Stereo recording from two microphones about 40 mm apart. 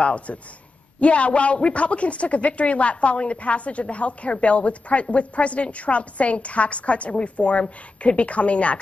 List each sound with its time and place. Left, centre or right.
0.0 s a man's voice: left